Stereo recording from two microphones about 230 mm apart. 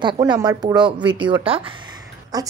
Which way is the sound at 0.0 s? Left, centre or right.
Centre.